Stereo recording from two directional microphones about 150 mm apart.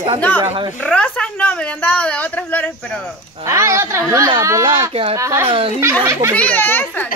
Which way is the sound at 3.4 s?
20° right (ahead or behind).